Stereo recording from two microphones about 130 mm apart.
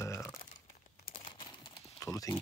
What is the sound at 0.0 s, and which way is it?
Crumpling, 20° left (ahead or behind).